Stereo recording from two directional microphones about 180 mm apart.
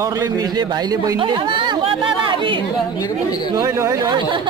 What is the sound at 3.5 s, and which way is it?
Speech, 15° right (ahead or behind).